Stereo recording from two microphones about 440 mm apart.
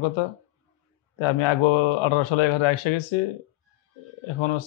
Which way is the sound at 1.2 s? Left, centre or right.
Left.